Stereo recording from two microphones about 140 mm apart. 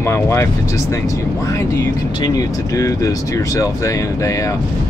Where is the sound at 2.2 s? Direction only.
25° left (ahead or behind).